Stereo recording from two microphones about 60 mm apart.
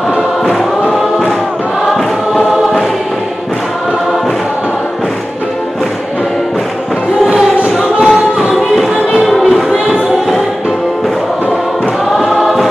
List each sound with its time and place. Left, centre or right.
2.0 s choir: centre
7.3 s music: centre
12.3 s choir: centre